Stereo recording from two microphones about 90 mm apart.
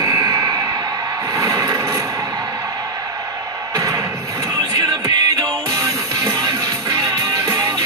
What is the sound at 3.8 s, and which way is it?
Music, 40° right (ahead or behind).